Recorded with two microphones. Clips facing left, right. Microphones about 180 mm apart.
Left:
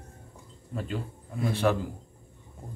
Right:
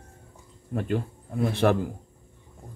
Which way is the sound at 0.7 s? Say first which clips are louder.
Right 6 dB; 55° right (ahead or behind).